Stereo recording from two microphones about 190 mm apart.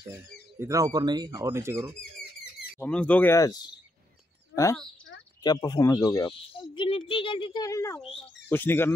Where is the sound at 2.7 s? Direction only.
5° left (ahead or behind).